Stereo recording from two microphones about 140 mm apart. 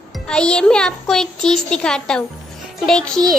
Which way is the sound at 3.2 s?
30° right (ahead or behind).